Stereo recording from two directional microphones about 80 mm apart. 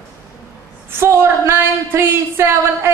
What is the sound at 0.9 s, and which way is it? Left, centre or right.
Speech, right.